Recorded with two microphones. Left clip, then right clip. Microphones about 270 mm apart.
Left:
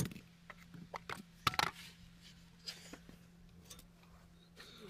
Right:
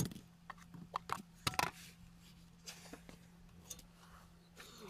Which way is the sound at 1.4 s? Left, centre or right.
Centre.